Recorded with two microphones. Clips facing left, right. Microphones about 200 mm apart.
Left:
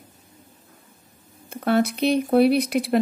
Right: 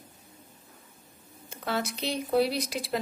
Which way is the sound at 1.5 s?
60° left (ahead or behind).